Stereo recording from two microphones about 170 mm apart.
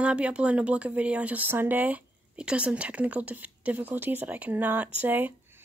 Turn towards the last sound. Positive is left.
turn(degrees=-10)  # may be behind; listen again after turning